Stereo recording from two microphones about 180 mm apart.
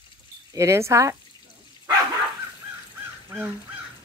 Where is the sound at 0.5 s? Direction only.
15° right (ahead or behind).